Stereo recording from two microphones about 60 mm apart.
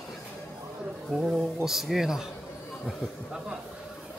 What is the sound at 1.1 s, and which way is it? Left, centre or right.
Speech, centre.